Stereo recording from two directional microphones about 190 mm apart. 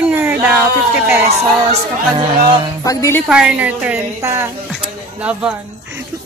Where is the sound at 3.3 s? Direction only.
5° right (ahead or behind).